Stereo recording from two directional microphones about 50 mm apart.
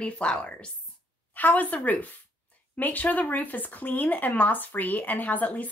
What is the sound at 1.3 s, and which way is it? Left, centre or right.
Speech, left.